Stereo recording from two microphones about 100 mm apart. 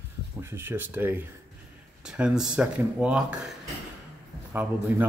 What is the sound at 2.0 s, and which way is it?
Speech, 5° right (ahead or behind).